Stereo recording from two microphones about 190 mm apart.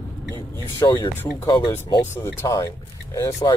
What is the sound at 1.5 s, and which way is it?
Speech, 25° left (ahead or behind).